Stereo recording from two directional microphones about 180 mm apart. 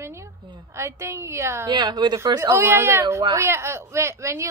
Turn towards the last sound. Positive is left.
turn(degrees=-15)  # may be behind; listen again after turning